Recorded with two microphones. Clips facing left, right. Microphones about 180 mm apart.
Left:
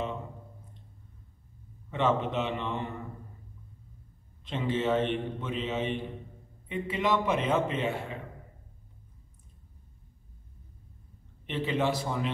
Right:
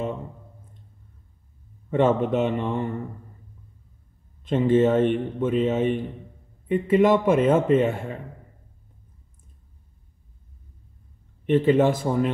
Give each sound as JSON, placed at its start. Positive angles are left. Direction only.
{"t": 1.9, "sound": "a man's voice", "side_deg": -50}
{"t": 4.5, "sound": "a man's voice", "side_deg": -50}
{"t": 11.4, "sound": "a man's voice", "side_deg": -50}